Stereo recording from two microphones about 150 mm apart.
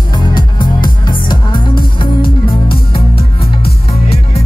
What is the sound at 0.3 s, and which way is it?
Music, 30° left (ahead or behind).